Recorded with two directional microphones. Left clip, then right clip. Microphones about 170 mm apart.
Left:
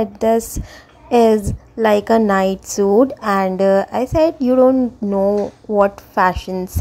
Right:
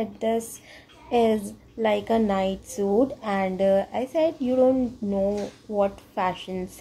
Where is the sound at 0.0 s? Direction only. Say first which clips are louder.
Left 10 dB; 35° left (ahead or behind).